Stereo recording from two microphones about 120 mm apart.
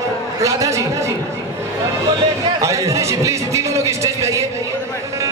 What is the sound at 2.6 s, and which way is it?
A man's voice, 25° right (ahead or behind).